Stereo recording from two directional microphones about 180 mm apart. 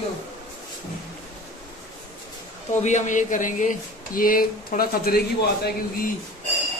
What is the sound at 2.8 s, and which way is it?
Speech, 40° left (ahead or behind).